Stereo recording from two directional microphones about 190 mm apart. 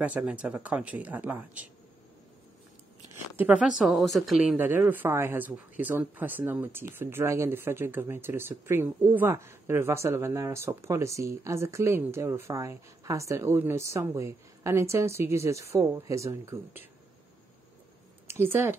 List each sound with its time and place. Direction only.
0.0 s a woman's voice: 5° right (ahead or behind)
3.3 s a woman's voice: 10° right (ahead or behind)
18.2 s speech: 10° right (ahead or behind)